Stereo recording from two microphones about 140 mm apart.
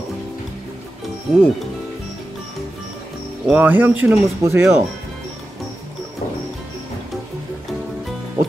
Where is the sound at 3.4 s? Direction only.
10° right (ahead or behind).